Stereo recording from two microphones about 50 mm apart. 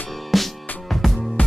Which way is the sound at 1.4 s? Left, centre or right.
Left.